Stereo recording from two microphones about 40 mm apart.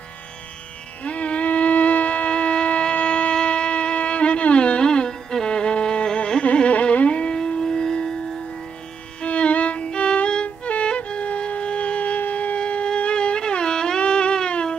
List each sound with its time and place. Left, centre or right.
1.0 s shofar: left
6.4 s music: left
9.2 s music: left
12.3 s shofar: left
12.5 s music: left